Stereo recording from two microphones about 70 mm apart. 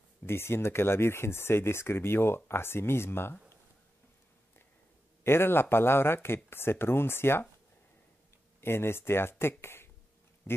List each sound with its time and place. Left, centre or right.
0.3 s speech: left
5.2 s speech: left
8.5 s speech: left
10.4 s a sound: left